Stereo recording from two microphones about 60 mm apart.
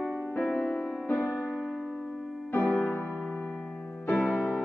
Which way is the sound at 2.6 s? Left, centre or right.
Centre.